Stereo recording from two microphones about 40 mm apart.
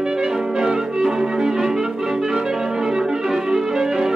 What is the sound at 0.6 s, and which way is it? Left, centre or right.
Music, centre.